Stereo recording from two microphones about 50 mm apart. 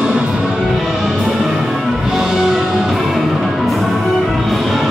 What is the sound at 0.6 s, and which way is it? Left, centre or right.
Music, centre.